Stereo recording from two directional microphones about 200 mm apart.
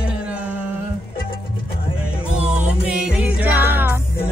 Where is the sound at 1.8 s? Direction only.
25° left (ahead or behind).